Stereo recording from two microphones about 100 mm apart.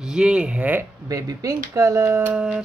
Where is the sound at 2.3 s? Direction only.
10° right (ahead or behind).